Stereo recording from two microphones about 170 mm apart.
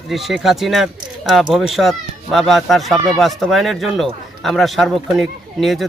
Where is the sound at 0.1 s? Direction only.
Centre (ahead or behind).